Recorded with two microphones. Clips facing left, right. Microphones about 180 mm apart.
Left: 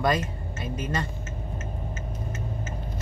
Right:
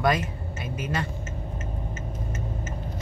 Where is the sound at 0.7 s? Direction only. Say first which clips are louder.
Even; 10° right (ahead or behind).